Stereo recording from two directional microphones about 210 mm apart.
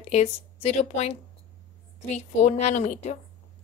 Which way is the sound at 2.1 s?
35° left (ahead or behind).